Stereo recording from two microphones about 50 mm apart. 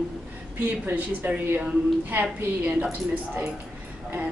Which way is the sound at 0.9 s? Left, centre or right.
Right.